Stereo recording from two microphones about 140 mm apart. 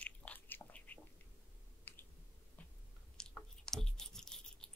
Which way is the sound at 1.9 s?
15° left (ahead or behind).